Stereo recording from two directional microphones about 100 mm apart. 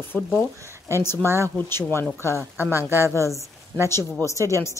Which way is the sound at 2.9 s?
25° right (ahead or behind).